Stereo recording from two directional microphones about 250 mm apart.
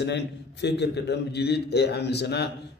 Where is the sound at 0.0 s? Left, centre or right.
Left.